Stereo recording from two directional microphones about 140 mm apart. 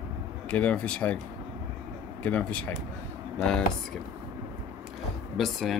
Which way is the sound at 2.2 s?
10° left (ahead or behind).